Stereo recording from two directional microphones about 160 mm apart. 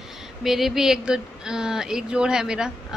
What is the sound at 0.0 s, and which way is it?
Speech, 5° right (ahead or behind).